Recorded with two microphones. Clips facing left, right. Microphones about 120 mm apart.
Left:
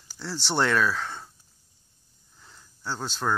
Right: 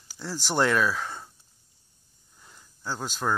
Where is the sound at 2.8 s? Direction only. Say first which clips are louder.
Even; 10° right (ahead or behind).